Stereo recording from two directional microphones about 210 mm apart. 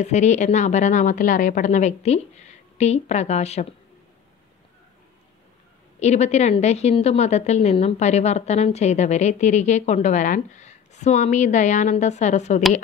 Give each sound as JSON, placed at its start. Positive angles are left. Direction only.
{"t": 0.0, "sound": "a woman's voice", "side_deg": 35}
{"t": 5.9, "sound": "a woman's voice", "side_deg": 30}